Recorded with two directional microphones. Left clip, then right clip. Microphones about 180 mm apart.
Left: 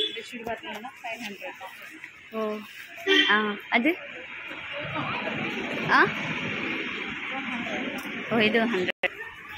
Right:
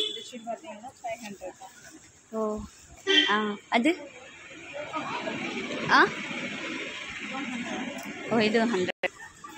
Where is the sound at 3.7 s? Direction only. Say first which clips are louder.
Even; 15° right (ahead or behind).